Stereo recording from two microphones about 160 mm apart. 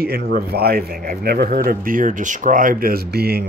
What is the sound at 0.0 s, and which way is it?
A man's voice, 75° right (ahead or behind).